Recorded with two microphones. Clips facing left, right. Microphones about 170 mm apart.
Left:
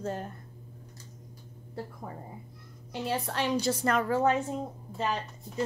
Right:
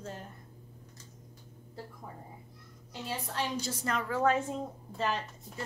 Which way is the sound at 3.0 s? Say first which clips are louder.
Left 5 dB; 70° left (ahead or behind).